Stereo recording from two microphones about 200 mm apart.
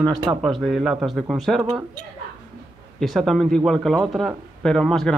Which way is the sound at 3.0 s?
Centre (ahead or behind).